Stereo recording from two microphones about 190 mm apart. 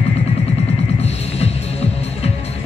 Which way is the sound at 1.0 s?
35° left (ahead or behind).